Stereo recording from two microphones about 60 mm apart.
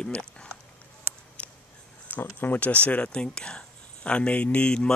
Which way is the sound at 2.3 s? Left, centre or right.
Left.